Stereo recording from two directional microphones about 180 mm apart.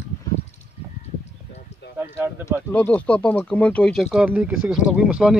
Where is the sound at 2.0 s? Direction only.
10° right (ahead or behind).